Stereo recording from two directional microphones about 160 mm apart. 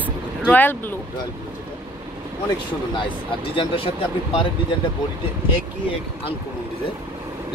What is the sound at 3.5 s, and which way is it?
Speech, 35° left (ahead or behind).